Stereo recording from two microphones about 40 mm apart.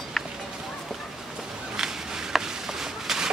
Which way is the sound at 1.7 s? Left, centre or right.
Centre.